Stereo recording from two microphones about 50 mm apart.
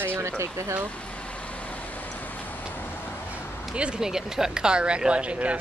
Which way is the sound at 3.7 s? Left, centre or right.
Centre.